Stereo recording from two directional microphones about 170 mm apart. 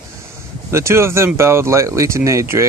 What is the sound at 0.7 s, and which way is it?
Speech, 15° right (ahead or behind).